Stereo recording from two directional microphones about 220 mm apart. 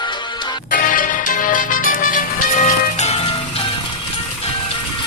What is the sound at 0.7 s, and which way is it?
Music, 35° left (ahead or behind).